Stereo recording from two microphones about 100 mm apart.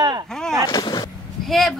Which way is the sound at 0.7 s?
45° left (ahead or behind).